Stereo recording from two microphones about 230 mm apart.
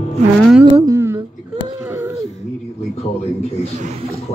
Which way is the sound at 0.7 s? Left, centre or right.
Centre.